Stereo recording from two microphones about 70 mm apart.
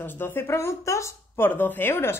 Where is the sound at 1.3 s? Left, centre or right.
Left.